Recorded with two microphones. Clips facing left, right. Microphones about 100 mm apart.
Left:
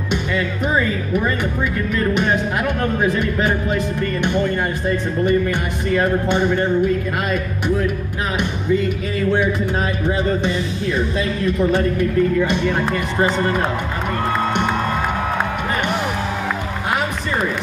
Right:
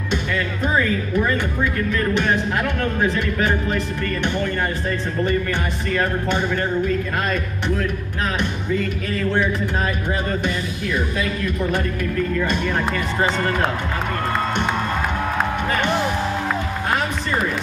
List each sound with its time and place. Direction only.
2.1 s speech: 15° left (ahead or behind)
11.7 s speech: 20° left (ahead or behind)